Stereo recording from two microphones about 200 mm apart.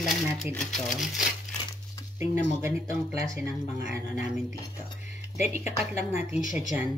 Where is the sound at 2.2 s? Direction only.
10° right (ahead or behind).